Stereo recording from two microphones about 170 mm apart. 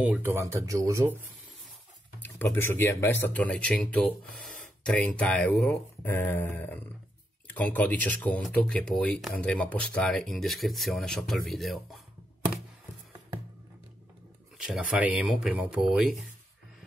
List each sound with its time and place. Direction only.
0.0 s speech: 10° right (ahead or behind)
2.2 s speech: 10° left (ahead or behind)
14.6 s speech: 5° right (ahead or behind)